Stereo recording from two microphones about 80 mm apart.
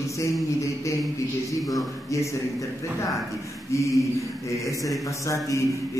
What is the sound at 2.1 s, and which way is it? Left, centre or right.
A man's voice, left.